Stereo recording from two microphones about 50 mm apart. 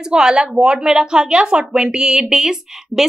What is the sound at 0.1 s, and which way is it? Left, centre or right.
A woman's voice, centre.